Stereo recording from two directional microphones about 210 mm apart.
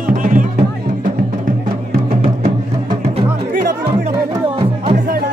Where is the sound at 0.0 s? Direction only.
40° right (ahead or behind).